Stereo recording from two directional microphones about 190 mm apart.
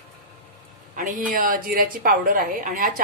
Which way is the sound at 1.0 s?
45° right (ahead or behind).